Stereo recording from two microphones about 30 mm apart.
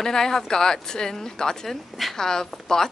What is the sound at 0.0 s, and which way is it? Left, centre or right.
Speech, centre.